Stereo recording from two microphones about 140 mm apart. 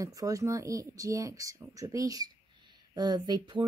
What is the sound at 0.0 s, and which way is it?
Speech, 25° right (ahead or behind).